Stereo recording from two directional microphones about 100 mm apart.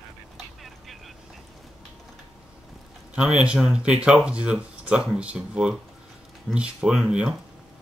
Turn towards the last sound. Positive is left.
turn(degrees=-10)  # may be behind; listen again after turning